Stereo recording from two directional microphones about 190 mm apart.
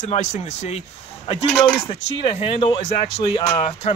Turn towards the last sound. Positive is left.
turn(degrees=30)  # may be behind; listen again after turning